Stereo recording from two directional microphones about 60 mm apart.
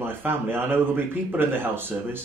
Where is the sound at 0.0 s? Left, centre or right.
Right.